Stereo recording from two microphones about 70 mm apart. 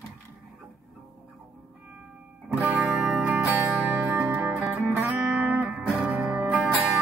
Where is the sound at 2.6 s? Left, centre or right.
Centre.